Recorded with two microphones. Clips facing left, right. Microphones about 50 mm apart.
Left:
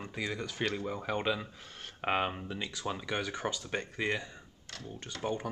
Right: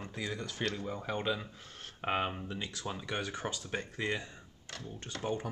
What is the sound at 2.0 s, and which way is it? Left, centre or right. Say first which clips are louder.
Speech: left 2 dB; left.